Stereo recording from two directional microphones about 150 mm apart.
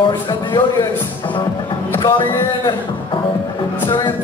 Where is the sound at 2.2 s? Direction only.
30° left (ahead or behind).